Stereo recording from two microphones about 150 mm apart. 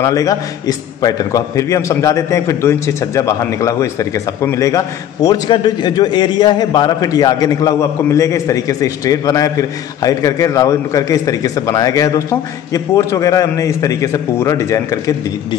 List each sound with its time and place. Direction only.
0.0 s a man's voice: 25° left (ahead or behind)